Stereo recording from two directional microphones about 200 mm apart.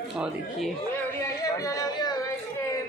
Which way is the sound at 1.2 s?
15° left (ahead or behind).